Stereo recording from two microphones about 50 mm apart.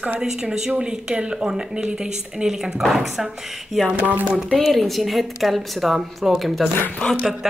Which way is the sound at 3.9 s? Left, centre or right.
Right.